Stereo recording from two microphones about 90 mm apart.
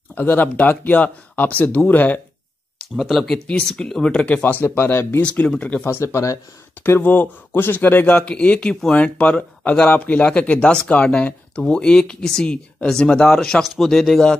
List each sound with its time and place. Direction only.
0.1 s speech: 20° left (ahead or behind)
3.0 s speech: centre (ahead or behind); by 5.2 s 25° left (ahead or behind)
5.2 s speech: 15° left (ahead or behind)
5.9 s speech: 30° left (ahead or behind)
6.8 s speech: 20° left (ahead or behind); by 14.3 s 5° left (ahead or behind)